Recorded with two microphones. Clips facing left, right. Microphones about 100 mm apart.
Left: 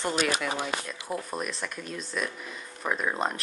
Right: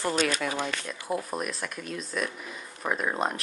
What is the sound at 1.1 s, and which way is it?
Speech, centre (ahead or behind).